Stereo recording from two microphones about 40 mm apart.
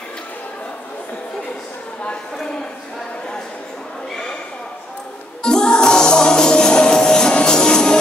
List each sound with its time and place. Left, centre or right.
5.4 s music: centre